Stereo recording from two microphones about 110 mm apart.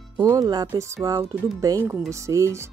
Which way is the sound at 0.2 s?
30° right (ahead or behind).